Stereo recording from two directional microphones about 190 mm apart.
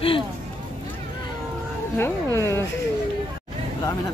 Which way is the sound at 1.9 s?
10° left (ahead or behind).